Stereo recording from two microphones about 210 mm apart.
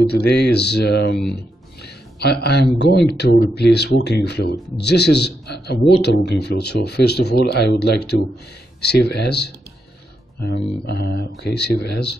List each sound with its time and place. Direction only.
0.0 s a man's voice: 50° left (ahead or behind)
1.3 s music: 50° left (ahead or behind)
2.8 s a man's voice: 50° left (ahead or behind)